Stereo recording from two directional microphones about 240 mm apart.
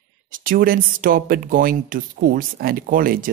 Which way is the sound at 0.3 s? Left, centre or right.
Right.